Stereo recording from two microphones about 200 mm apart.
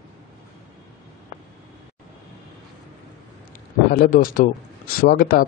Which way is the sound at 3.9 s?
45° left (ahead or behind).